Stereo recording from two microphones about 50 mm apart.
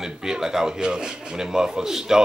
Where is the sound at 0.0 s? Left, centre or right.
Centre.